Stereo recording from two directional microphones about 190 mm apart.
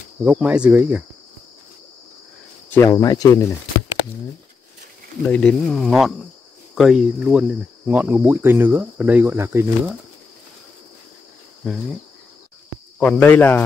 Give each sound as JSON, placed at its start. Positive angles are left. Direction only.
{"t": 0.2, "sound": "speech", "side_deg": -10}
{"t": 2.7, "sound": "speech", "side_deg": 15}
{"t": 5.2, "sound": "speech", "side_deg": 5}
{"t": 11.6, "sound": "speech", "side_deg": 0}
{"t": 13.0, "sound": "speech", "side_deg": 10}